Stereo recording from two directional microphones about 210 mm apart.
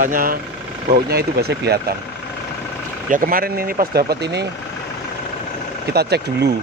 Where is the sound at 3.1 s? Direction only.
40° right (ahead or behind).